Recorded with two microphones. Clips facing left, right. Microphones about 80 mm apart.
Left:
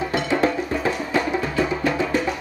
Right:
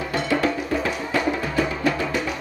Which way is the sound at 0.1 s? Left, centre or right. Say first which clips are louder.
Even; left.